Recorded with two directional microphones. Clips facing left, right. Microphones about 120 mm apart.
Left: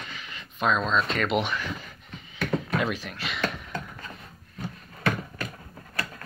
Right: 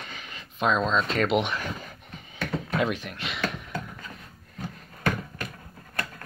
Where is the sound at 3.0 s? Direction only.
20° right (ahead or behind).